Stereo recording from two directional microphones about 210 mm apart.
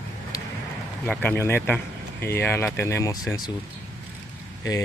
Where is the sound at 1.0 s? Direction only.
10° left (ahead or behind).